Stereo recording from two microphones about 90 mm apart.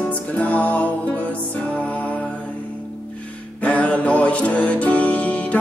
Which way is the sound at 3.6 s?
15° left (ahead or behind).